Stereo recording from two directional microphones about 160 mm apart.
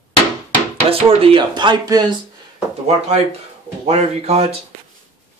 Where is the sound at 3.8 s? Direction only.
40° right (ahead or behind).